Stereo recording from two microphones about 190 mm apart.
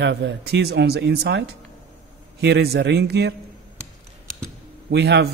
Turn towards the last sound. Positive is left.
turn(degrees=-60)  # may be behind; listen again after turning